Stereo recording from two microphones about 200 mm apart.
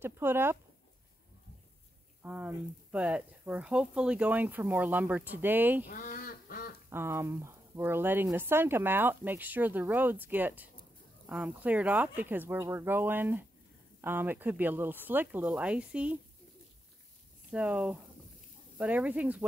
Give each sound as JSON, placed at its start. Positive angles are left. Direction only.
{"t": 0.0, "sound": "a sound", "side_deg": -10}
{"t": 2.2, "sound": "speech", "side_deg": -5}
{"t": 5.9, "sound": "duck", "side_deg": 40}
{"t": 6.9, "sound": "speech", "side_deg": -10}
{"t": 17.5, "sound": "speech", "side_deg": -5}